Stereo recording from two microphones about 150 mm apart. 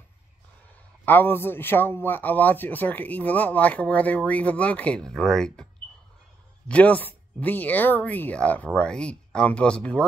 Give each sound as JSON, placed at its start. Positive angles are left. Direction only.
{"t": 1.0, "sound": "a man's voice", "side_deg": 15}
{"t": 6.7, "sound": "a man's voice", "side_deg": 10}